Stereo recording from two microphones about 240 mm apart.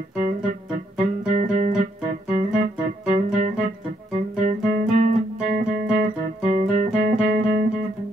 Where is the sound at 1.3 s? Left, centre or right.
Right.